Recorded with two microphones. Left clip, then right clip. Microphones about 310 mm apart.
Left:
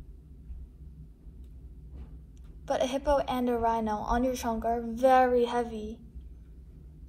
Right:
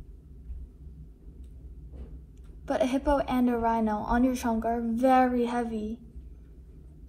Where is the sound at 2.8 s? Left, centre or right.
Left.